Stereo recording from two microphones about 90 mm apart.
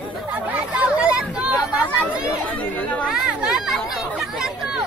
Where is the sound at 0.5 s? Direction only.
15° right (ahead or behind).